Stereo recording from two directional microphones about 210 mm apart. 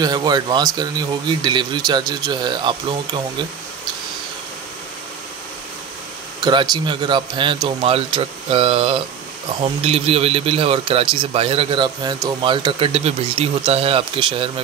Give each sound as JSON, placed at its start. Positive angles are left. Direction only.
{"t": 0.0, "sound": "speech", "side_deg": -20}
{"t": 6.4, "sound": "speech", "side_deg": -20}